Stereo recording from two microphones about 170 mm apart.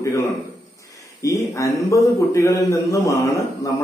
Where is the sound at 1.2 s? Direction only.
20° left (ahead or behind).